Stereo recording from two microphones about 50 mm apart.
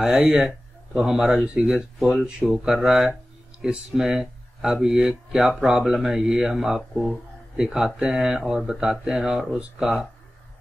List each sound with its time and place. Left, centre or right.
0.9 s speech: centre
2.0 s speech: centre